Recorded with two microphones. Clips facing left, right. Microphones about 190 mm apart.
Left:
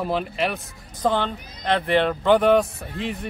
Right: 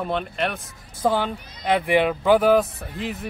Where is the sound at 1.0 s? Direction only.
10° right (ahead or behind).